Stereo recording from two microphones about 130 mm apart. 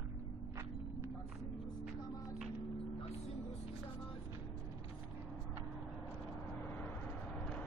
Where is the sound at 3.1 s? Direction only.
55° left (ahead or behind).